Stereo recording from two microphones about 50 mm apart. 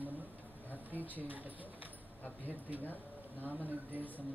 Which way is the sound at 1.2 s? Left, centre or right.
Right.